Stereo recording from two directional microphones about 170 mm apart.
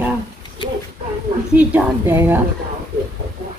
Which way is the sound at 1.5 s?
10° right (ahead or behind).